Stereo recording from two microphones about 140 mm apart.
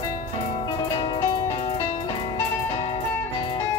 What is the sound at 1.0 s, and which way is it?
Music, 35° left (ahead or behind).